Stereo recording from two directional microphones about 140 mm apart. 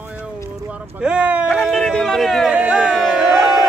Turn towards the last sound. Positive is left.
turn(degrees=0)  # may be behind; listen again after turning